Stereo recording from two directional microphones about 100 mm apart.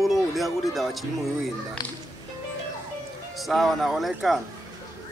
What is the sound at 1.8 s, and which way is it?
Speech, 45° left (ahead or behind).